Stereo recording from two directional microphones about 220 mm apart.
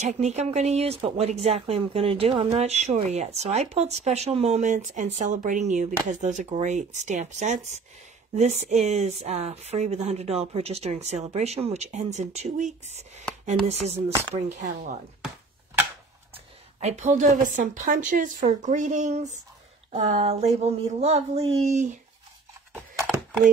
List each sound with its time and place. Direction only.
0.0 s speech: 30° right (ahead or behind)
16.8 s speech: 30° right (ahead or behind)
23.1 s a sound: 5° right (ahead or behind)